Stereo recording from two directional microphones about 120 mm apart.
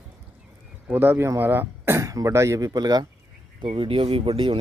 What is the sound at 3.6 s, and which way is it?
Speech, 45° right (ahead or behind).